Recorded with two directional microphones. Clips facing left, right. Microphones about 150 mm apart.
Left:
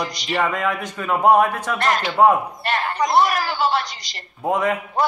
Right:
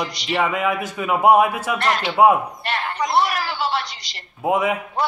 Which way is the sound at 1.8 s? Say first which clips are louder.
Left 2 dB; 45° left (ahead or behind).